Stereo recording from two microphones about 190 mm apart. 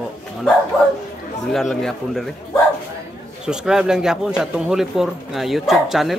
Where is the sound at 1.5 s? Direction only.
Centre (ahead or behind).